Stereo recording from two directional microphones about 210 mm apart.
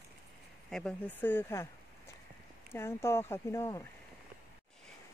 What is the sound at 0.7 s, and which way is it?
Speech, 5° left (ahead or behind).